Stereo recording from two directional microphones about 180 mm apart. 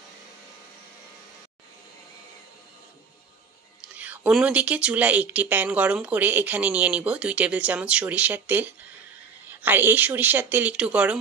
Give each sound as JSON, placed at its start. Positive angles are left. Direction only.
{"t": 3.8, "sound": "speech", "side_deg": -5}